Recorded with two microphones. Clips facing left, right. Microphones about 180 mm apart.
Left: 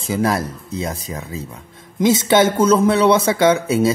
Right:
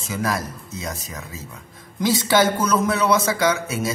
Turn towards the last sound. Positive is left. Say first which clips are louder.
# left 7 dB
turn(degrees=30)  # may be behind; listen again after turning